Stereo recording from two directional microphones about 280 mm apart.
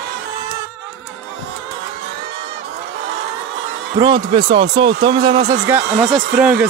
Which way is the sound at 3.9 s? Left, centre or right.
Centre.